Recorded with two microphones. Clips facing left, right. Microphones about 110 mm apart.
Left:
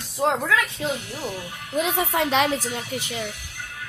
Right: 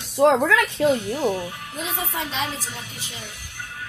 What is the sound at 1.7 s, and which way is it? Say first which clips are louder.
Speech: left 8 dB; 70° left (ahead or behind).